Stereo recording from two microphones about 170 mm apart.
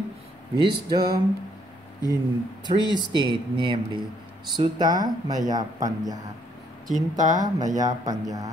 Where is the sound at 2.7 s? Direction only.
25° left (ahead or behind).